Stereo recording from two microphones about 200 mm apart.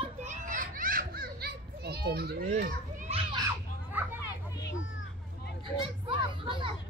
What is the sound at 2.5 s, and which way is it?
Speech, 45° right (ahead or behind).